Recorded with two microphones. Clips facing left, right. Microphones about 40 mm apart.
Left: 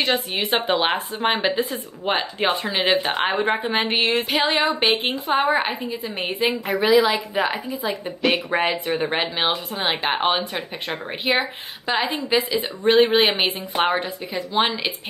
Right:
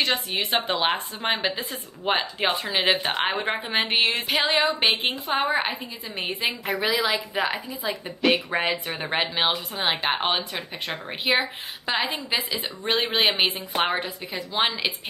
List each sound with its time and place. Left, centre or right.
0.0 s speech: centre